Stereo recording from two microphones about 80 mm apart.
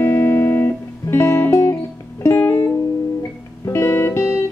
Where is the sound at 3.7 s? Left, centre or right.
Left.